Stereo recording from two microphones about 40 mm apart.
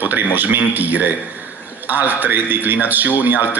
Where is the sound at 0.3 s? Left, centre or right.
Right.